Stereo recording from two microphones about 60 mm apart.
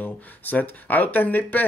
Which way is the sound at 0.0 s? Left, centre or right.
Left.